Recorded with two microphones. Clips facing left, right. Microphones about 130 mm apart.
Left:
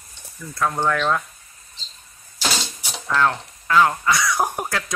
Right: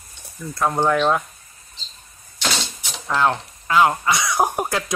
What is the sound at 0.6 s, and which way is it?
Speech, 20° right (ahead or behind).